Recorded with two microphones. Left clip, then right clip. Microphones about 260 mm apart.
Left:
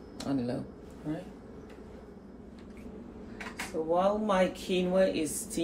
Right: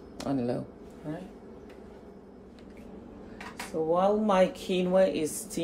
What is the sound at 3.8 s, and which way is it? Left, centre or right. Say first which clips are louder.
A woman's voice: right 2 dB; right.